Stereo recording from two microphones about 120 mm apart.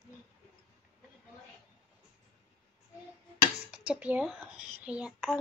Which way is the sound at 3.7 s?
10° right (ahead or behind).